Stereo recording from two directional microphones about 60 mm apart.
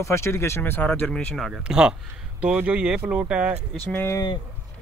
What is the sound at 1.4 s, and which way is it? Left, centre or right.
Speech, centre.